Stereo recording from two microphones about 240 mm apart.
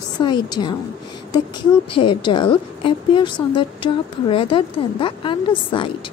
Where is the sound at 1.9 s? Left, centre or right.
Centre.